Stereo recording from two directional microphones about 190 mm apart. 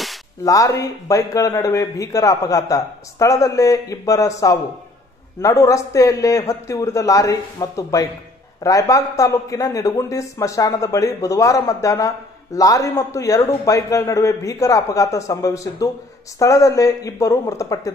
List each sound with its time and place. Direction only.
0.5 s a man's voice: 15° left (ahead or behind)